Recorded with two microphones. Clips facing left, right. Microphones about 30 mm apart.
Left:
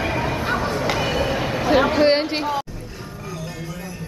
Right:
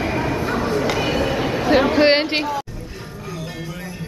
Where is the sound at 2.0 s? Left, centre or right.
Right.